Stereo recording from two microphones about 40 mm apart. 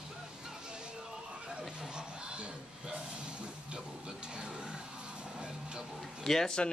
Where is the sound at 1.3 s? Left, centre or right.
Right.